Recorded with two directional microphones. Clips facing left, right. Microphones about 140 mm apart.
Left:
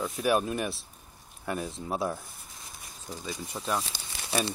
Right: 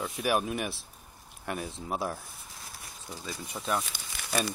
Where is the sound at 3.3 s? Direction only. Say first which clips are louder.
Even; centre (ahead or behind).